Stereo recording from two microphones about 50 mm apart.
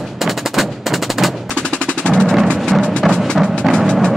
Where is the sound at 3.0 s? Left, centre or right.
Centre.